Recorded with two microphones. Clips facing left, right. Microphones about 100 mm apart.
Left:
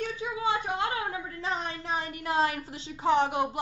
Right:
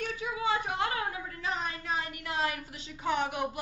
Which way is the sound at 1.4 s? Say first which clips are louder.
Left 1 dB; 25° left (ahead or behind).